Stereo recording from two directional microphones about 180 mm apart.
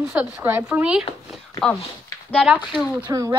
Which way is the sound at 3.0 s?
15° right (ahead or behind).